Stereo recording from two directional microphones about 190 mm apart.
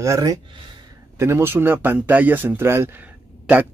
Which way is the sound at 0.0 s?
15° right (ahead or behind).